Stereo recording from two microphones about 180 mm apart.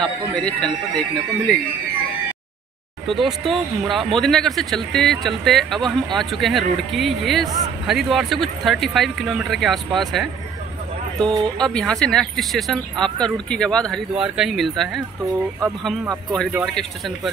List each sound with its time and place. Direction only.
0.0 s speech: 5° left (ahead or behind)
3.1 s speech: centre (ahead or behind)
11.2 s speech: 25° right (ahead or behind)
11.6 s speech: 5° left (ahead or behind)
16.6 s speech: centre (ahead or behind)